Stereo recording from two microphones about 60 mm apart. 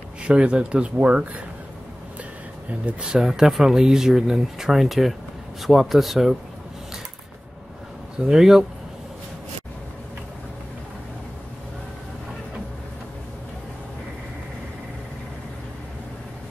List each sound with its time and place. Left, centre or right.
0.2 s speech: centre
2.9 s a man's voice: centre
8.2 s speech: centre